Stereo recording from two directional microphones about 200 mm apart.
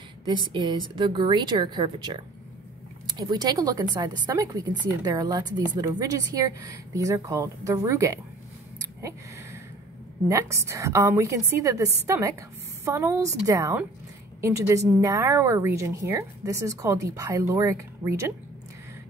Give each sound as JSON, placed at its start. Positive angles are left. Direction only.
{"t": 0.3, "sound": "a woman's voice", "side_deg": -25}
{"t": 10.2, "sound": "a woman's voice", "side_deg": -15}